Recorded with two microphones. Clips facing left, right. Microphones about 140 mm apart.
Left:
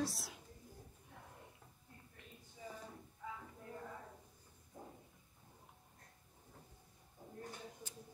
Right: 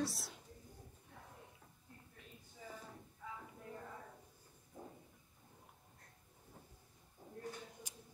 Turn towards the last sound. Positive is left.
turn(degrees=-15)  # may be behind; listen again after turning